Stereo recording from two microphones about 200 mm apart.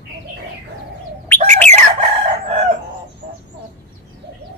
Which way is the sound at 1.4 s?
35° right (ahead or behind).